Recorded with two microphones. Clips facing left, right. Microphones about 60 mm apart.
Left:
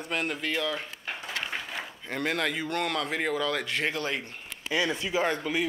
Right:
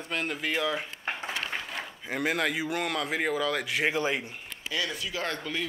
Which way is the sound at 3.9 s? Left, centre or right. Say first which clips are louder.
Right 3 dB; centre.